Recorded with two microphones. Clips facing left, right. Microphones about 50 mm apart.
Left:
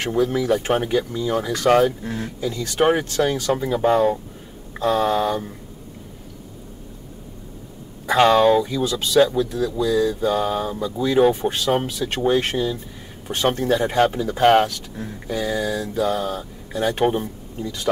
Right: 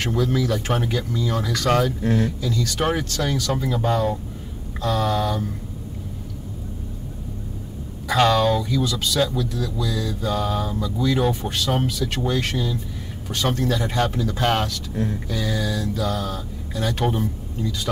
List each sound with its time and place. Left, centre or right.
0.0 s speech: left
2.0 s speech: right
2.4 s speech: left
8.1 s speech: left